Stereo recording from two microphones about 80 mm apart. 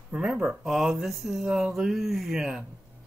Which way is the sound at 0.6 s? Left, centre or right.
Centre.